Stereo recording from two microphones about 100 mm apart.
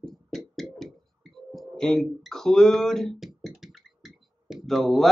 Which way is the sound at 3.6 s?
Centre (ahead or behind).